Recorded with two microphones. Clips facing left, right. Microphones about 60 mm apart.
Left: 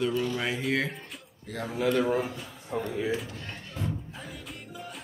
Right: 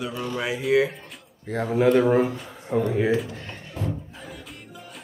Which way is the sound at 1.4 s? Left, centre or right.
Right.